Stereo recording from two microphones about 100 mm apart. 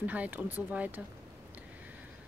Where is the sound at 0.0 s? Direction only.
15° right (ahead or behind).